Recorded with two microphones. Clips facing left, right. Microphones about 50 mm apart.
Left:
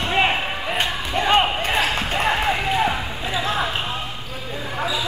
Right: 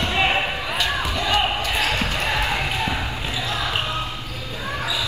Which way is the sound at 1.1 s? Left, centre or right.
Left.